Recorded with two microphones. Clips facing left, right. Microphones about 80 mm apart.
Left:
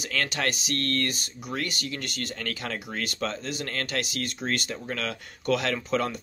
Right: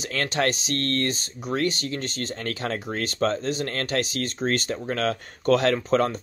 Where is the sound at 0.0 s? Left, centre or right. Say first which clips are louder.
Right 4 dB; right.